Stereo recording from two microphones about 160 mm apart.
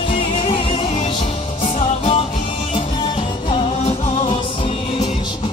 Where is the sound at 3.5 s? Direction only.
40° left (ahead or behind).